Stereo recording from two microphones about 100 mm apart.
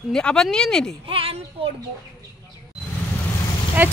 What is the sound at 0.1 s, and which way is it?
Speech, 10° left (ahead or behind).